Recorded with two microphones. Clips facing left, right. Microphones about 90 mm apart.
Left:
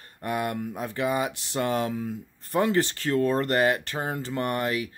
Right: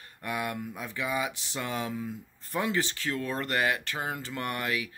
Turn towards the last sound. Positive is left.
turn(degrees=35)  # may be behind; listen again after turning